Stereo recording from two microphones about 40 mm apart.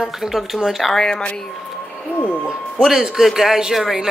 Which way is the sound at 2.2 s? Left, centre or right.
Left.